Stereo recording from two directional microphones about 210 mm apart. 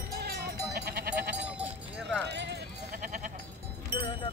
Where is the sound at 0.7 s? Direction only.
50° right (ahead or behind).